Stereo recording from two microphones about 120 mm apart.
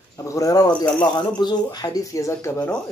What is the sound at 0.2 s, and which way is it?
Speech, 25° left (ahead or behind).